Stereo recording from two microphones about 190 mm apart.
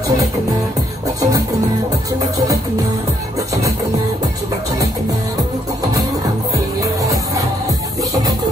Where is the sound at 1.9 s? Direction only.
20° right (ahead or behind).